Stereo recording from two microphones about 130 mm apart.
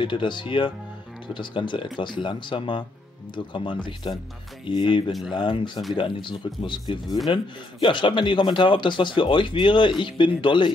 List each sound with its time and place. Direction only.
0.0 s speech: 40° left (ahead or behind)